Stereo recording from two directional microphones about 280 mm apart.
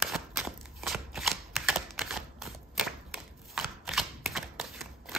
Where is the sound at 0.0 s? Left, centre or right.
Centre.